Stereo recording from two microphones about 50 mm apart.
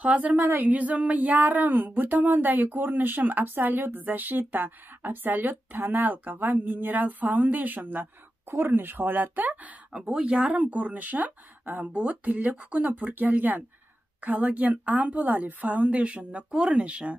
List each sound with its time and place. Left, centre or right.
0.0 s a woman's voice: right
0.4 s a sound: right
0.7 s speech: right
8.5 s speech: right
9.9 s a woman's voice: centre